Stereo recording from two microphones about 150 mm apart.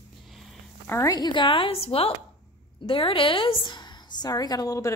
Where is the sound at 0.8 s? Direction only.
20° left (ahead or behind).